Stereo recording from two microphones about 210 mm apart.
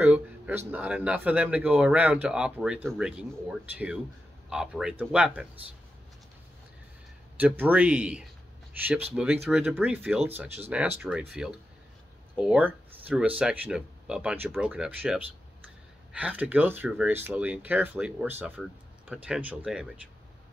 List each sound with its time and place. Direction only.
0.0 s speech: 10° right (ahead or behind)
7.3 s speech: 10° right (ahead or behind)